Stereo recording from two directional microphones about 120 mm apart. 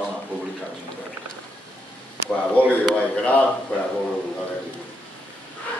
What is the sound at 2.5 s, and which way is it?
Speech, 10° left (ahead or behind).